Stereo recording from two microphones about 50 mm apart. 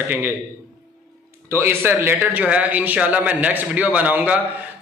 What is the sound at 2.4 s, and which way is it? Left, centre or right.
A man's voice, right.